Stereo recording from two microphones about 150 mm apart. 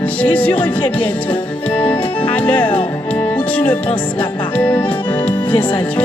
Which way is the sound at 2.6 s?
35° left (ahead or behind).